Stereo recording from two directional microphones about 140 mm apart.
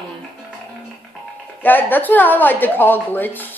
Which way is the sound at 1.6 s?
15° left (ahead or behind).